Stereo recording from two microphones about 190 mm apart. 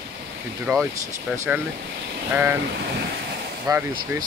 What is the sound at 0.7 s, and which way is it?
Speech, 5° right (ahead or behind).